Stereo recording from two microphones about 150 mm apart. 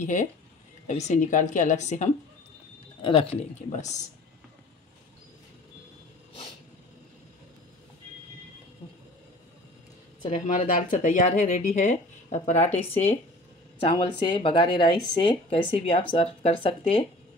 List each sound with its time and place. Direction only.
0.0 s speech: 55° left (ahead or behind)
3.0 s speech: 35° left (ahead or behind)
10.3 s speech: 60° left (ahead or behind)
13.7 s speech: 35° left (ahead or behind)